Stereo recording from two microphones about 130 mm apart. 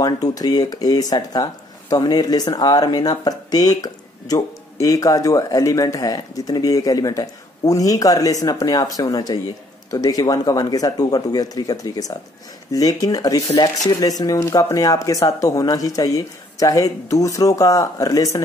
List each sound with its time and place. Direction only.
0.0 s speech: 30° left (ahead or behind)